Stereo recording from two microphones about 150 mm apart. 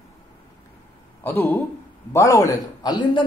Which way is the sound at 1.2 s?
15° left (ahead or behind).